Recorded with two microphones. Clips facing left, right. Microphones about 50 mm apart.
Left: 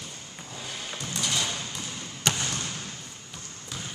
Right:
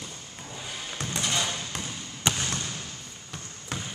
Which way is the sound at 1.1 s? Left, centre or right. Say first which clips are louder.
Right 1 dB; right.